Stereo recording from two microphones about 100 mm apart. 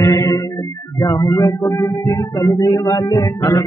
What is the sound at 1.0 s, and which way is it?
Speech, 35° left (ahead or behind).